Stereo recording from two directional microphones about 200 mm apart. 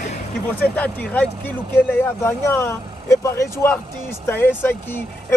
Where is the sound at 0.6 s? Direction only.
10° left (ahead or behind).